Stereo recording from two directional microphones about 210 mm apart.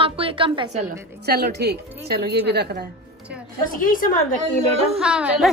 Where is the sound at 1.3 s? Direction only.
50° right (ahead or behind).